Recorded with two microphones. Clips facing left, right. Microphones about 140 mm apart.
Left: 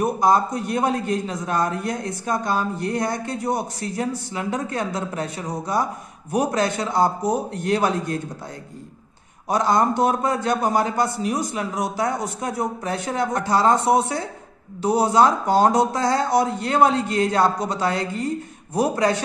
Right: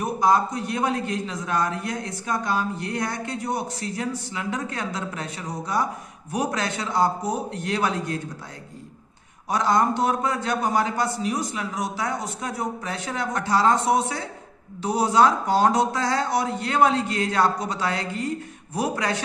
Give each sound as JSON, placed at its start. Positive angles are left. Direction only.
{"t": 0.0, "sound": "a man's voice", "side_deg": 40}
{"t": 9.5, "sound": "a man's voice", "side_deg": 40}